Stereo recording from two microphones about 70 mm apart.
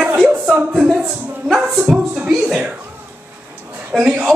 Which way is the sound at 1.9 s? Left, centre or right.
Centre.